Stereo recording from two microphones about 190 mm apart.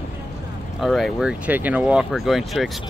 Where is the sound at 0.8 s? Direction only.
Centre (ahead or behind).